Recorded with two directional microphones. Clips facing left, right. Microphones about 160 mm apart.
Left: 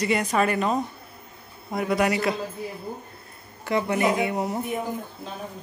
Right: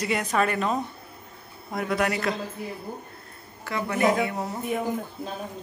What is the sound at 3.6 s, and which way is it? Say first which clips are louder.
Speech: left 1 dB; 20° left (ahead or behind).